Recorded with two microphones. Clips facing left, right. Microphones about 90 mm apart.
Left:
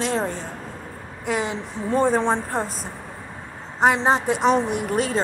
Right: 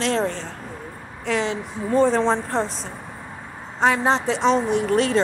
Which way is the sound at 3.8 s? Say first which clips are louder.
Left 1 dB; 15° left (ahead or behind).